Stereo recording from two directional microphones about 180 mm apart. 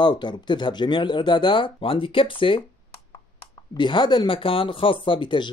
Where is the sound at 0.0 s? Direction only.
25° left (ahead or behind).